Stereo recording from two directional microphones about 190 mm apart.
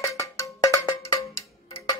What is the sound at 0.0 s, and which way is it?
Cowbell, 15° left (ahead or behind).